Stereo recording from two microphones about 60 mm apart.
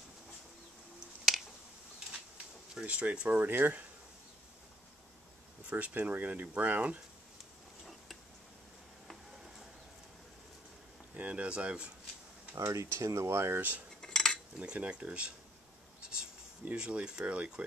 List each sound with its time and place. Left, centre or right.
2.1 s speech: centre; by 3.8 s right
5.7 s speech: right
11.1 s a sound: right
12.5 s speech: right
13.6 s speech: right
14.0 s cutlery: centre
14.6 s speech: right
16.7 s speech: centre